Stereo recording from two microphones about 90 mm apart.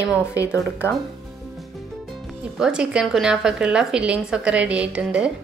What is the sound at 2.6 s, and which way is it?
A woman's voice, 10° right (ahead or behind).